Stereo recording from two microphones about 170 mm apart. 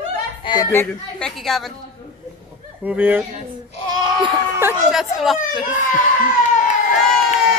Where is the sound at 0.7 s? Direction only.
5° left (ahead or behind).